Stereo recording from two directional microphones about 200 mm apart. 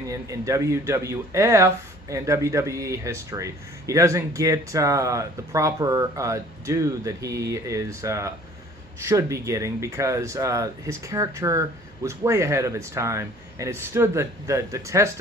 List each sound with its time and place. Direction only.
0.0 s speech: 15° right (ahead or behind)